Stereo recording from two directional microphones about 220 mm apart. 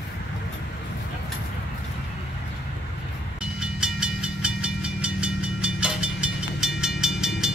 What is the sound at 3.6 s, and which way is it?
Train, 5° right (ahead or behind).